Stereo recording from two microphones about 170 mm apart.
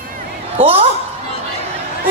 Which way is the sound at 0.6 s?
35° right (ahead or behind).